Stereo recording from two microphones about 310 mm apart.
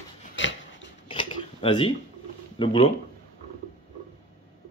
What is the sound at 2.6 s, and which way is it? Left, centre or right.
Speech, centre.